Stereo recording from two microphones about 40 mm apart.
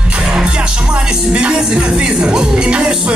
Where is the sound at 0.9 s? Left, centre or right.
Right.